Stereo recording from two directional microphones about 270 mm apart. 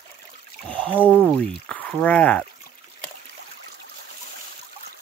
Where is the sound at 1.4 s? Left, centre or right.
Centre.